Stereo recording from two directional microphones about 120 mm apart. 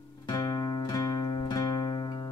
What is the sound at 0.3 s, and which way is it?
Music, 40° left (ahead or behind).